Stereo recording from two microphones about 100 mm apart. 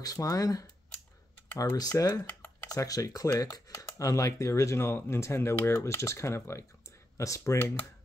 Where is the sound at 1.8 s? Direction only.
40° left (ahead or behind).